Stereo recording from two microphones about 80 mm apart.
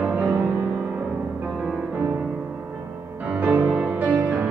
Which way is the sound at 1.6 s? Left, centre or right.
Centre.